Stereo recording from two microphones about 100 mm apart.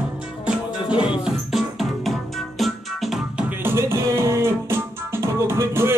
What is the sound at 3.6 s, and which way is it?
Music, 25° right (ahead or behind).